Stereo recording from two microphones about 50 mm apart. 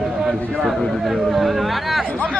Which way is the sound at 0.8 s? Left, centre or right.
Centre.